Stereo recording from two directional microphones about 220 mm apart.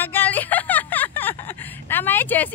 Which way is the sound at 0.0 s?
10° left (ahead or behind).